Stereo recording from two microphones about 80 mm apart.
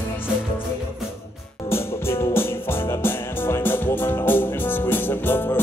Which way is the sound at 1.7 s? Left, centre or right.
Left.